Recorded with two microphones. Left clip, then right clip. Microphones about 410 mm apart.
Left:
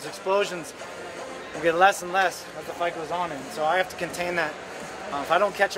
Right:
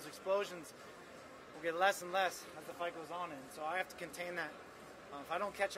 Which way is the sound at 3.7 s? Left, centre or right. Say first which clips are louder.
Left 15 dB; right.